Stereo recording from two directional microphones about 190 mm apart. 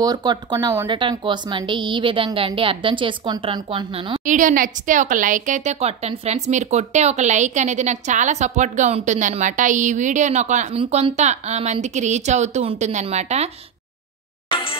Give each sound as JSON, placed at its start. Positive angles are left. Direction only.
{"t": 0.0, "sound": "a woman's voice", "side_deg": -20}
{"t": 4.3, "sound": "a woman's voice", "side_deg": -40}
{"t": 14.5, "sound": "music", "side_deg": 30}